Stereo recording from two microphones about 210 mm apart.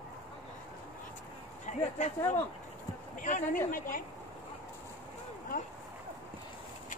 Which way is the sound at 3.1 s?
40° left (ahead or behind).